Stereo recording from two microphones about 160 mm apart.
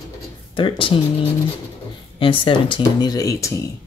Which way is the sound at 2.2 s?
35° left (ahead or behind).